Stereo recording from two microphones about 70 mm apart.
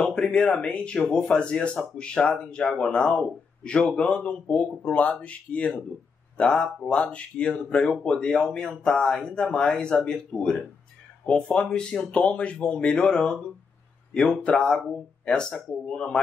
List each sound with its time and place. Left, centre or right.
0.0 s speech: centre
14.4 s speech: centre